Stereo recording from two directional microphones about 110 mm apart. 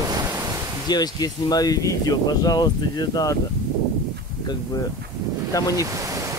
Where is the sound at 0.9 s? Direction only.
40° left (ahead or behind).